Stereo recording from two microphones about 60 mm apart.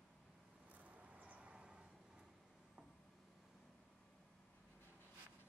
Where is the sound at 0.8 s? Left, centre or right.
Right.